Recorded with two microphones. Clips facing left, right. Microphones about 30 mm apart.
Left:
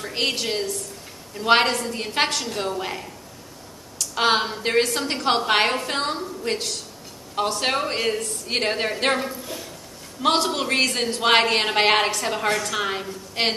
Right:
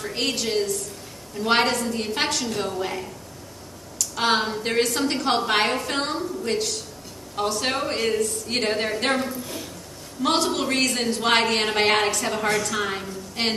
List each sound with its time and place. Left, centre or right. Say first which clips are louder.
0.0 s a woman's voice: left 1 dB; centre